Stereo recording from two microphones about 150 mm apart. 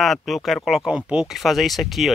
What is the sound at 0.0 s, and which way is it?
Speech, centre (ahead or behind).